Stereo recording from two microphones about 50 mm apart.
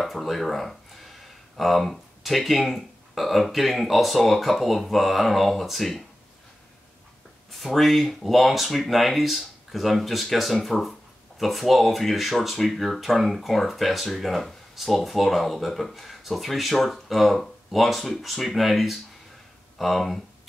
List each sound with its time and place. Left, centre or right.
0.0 s speech: centre
7.5 s speech: centre